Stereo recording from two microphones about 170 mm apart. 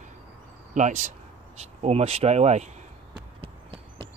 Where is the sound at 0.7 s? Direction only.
45° right (ahead or behind).